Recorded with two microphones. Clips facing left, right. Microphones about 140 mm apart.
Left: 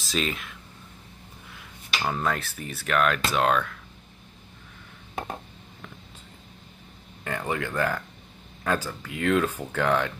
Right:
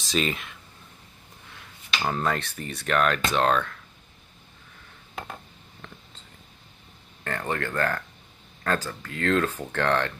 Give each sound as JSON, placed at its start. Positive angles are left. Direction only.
{"t": 0.0, "sound": "speech", "side_deg": 0}
{"t": 2.0, "sound": "speech", "side_deg": 0}
{"t": 5.1, "sound": "a sound", "side_deg": 25}
{"t": 7.2, "sound": "speech", "side_deg": 10}